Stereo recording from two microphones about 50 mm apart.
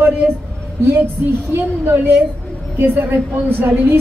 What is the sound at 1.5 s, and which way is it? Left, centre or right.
A woman's voice, right.